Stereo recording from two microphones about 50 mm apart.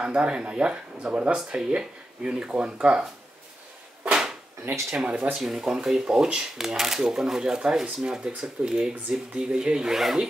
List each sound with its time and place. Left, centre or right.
0.0 s speech: right
4.0 s a sound: centre
4.9 s speech: right
5.3 s speech: centre